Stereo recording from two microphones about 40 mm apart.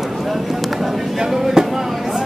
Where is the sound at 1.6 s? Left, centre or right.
Centre.